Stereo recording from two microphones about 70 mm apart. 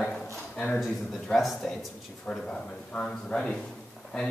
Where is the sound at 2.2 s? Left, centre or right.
Centre.